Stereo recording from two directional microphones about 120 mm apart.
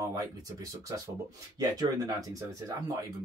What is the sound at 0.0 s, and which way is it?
Speech, 30° right (ahead or behind).